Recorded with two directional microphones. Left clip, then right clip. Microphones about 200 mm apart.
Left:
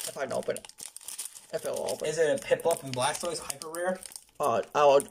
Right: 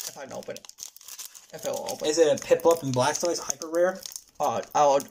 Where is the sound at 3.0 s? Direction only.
30° right (ahead or behind).